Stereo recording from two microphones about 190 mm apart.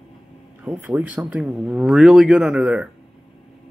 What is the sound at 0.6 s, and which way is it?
Speech, 5° right (ahead or behind).